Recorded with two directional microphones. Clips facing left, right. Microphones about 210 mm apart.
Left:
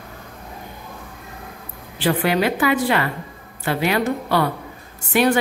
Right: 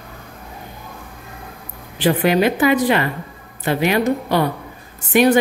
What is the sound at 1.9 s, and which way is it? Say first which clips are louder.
A woman's voice: right 3 dB; 20° right (ahead or behind).